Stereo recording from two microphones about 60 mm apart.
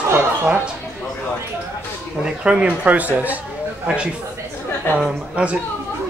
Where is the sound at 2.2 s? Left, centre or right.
Centre.